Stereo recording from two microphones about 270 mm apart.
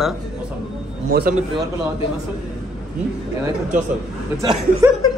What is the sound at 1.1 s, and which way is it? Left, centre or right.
Speech, right.